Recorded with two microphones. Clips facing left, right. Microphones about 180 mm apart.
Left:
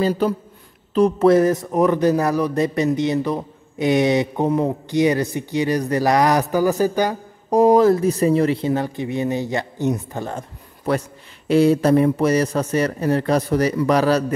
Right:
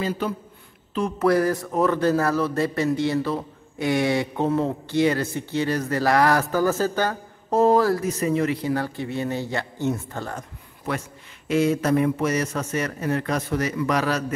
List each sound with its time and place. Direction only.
0.0 s a man's voice: 40° left (ahead or behind)
1.3 s speech: 20° left (ahead or behind)
8.1 s speech: 35° left (ahead or behind)
10.9 s a man's voice: 35° left (ahead or behind)